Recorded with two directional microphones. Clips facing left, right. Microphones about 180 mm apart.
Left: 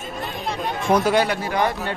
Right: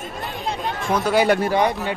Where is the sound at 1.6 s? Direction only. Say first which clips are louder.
Right 2 dB; 20° right (ahead or behind).